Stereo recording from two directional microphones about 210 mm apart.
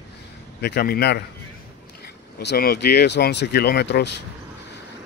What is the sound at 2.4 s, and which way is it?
Speech, 50° left (ahead or behind).